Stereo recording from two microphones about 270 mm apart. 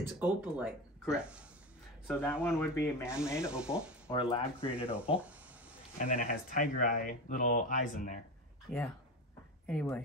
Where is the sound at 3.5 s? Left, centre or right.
Centre.